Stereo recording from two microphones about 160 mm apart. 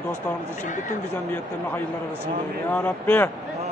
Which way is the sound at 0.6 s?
50° left (ahead or behind).